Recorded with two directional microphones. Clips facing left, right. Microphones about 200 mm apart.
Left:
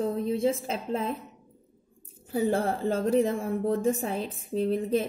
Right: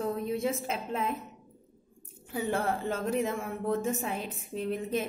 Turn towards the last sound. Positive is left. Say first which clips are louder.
# left 6 dB
turn(degrees=35)  # may be behind; listen again after turning